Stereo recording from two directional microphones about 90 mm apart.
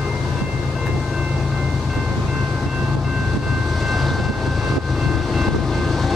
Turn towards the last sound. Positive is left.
turn(degrees=0)  # may be behind; listen again after turning